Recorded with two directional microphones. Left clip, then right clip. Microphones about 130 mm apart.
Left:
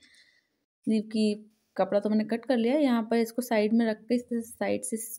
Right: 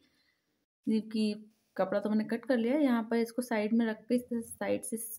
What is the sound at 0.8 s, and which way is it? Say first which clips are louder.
Speech: left 5 dB; 25° left (ahead or behind).